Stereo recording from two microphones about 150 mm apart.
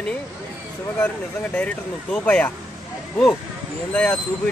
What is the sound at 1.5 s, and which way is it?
Speech, 10° left (ahead or behind).